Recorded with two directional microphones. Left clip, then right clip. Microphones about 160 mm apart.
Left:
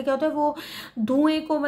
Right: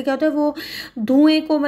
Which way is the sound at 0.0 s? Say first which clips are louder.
Right 4 dB; 15° right (ahead or behind).